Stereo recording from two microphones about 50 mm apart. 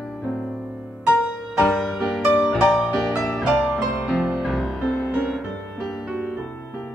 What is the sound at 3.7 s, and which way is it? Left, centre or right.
Music, centre.